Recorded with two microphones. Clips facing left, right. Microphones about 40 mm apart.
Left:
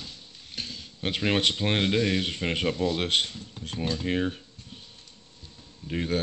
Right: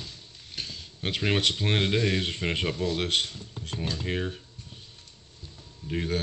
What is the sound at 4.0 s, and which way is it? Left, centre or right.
Speech, centre.